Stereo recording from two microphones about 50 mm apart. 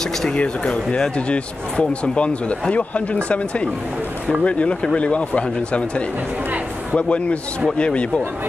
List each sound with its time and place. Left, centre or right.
0.4 s speech: left